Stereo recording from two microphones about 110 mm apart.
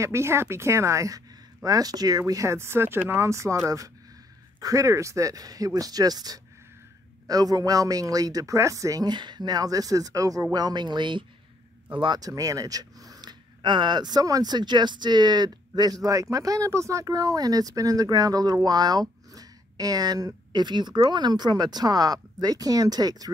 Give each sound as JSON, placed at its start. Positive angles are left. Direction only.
{"t": 0.0, "sound": "speech", "side_deg": -25}